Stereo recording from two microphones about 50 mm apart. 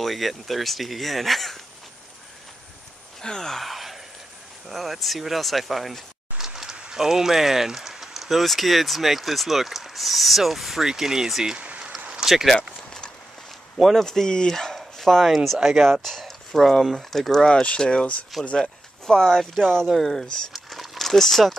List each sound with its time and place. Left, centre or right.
0.0 s speech: centre
3.2 s gasp: centre
4.6 s speech: centre
11.5 s rain on surface: right
12.3 s speech: centre
13.7 s speech: centre
14.0 s speech: centre
14.5 s dog: centre
14.8 s speech: centre
17.5 s speech: centre
19.9 s a sound: centre
21.1 s speech: centre